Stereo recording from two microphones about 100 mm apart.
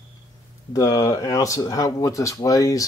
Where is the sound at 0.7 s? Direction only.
35° left (ahead or behind).